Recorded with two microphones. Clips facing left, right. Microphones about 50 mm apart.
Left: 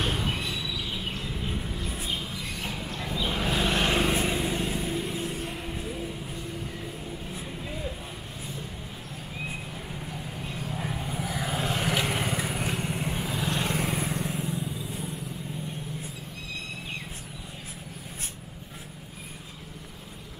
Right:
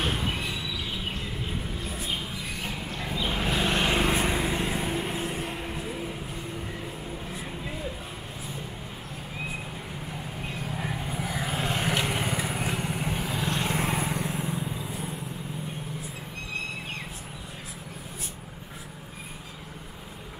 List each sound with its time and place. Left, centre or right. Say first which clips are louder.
0.0 s a sound: even; centre
2.0 s vehicle: even; centre
4.1 s vehicle: right 1 dB; right
5.5 s music: right 1 dB; right
10.4 s vehicle: right 1 dB; centre